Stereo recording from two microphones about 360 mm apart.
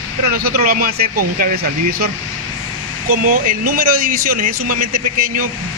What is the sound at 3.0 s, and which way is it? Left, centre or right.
Speech, right.